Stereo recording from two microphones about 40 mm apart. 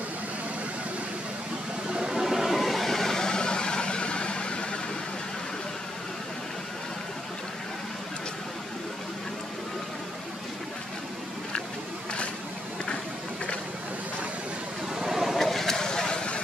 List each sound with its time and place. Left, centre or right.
2.0 s vehicle: centre; by 4.6 s left
15.0 s vehicle: centre
15.3 s a sound: centre